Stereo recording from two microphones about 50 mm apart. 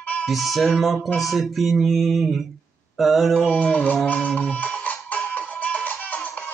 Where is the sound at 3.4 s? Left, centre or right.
Left.